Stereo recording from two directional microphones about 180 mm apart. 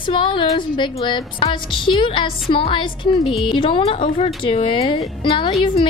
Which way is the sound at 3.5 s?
30° left (ahead or behind).